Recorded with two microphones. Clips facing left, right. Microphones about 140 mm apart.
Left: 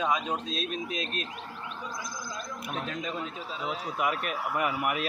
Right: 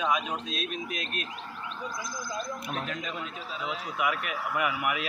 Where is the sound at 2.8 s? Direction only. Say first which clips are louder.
Left 2 dB; 30° left (ahead or behind).